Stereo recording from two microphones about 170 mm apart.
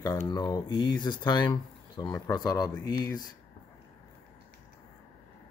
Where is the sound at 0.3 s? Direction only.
25° left (ahead or behind).